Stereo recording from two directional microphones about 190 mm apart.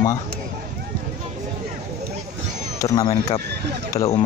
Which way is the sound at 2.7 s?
20° left (ahead or behind).